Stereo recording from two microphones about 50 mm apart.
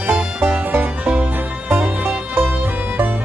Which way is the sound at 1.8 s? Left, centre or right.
Right.